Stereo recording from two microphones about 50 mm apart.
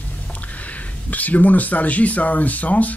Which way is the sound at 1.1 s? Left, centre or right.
Left.